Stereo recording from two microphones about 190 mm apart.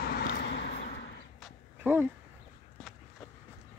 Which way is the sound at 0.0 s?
50° left (ahead or behind).